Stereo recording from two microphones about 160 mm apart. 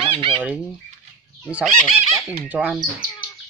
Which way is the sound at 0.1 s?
35° right (ahead or behind).